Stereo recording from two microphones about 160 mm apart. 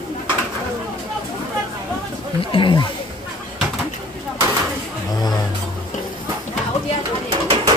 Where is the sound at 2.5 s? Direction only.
30° left (ahead or behind).